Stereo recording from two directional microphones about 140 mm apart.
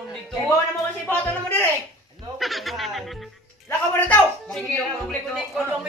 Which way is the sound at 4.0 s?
10° left (ahead or behind).